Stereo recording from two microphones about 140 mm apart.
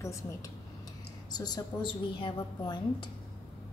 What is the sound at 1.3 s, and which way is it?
A woman's voice, 30° left (ahead or behind).